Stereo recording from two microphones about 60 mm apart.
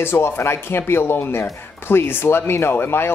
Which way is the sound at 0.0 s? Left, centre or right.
Left.